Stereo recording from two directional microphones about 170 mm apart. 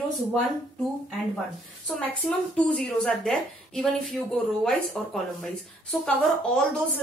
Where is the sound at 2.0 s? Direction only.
5° left (ahead or behind).